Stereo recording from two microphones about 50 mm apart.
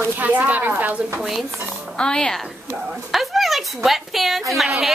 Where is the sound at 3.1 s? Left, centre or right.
Centre.